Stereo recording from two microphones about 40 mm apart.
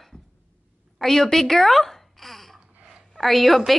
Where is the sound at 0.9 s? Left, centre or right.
Centre.